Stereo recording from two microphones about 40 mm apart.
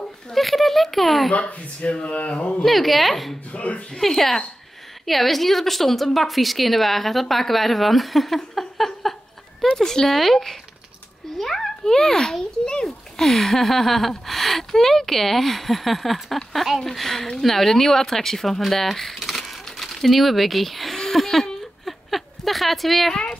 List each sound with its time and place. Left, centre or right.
0.3 s speech: centre
1.5 s speech: left
2.6 s speech: centre
3.5 s speech: left
3.9 s a woman's voice: centre
8.4 s a sound: centre
9.6 s a woman's voice: centre
21.8 s a sound: centre